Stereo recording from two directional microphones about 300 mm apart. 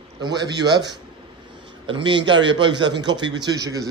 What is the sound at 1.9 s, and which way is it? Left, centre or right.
A man's voice, centre.